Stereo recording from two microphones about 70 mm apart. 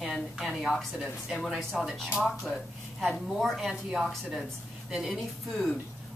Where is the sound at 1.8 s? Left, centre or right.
Centre.